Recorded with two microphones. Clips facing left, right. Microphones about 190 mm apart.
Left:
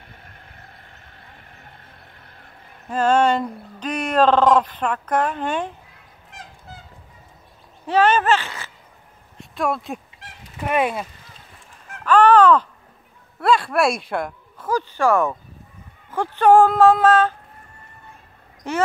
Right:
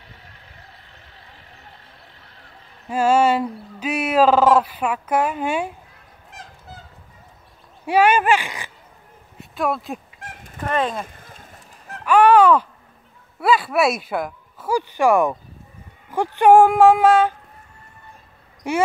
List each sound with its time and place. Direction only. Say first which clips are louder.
0.0 s a sound: left 1 dB; 50° left (ahead or behind)
2.9 s speech: right 1 dB; 10° right (ahead or behind)
7.8 s speech: right 1 dB; 10° right (ahead or behind)
9.4 s speech: even; centre (ahead or behind)
10.2 s goose: right 5 dB; 50° right (ahead or behind)
10.6 s speech: left 1 dB; 10° left (ahead or behind)
11.1 s fowl: right 4 dB; 50° right (ahead or behind)
12.0 s a sound: even; 10° right (ahead or behind)
13.4 s speech: even; 5° right (ahead or behind)
18.6 s speech: right 2 dB; 10° right (ahead or behind)